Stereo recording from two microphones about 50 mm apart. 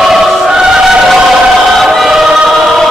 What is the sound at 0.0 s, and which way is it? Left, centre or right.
Choir, centre.